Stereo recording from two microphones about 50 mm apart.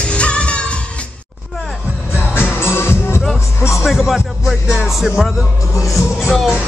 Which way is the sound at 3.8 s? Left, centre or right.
Centre.